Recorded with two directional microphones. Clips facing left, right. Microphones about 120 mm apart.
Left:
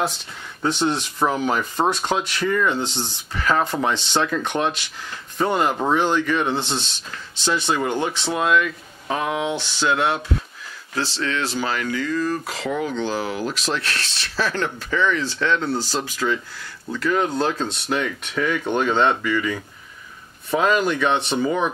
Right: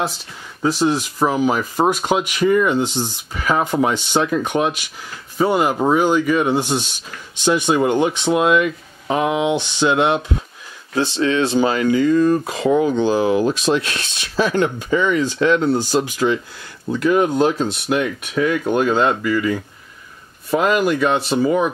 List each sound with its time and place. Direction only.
0.0 s speech: 5° right (ahead or behind)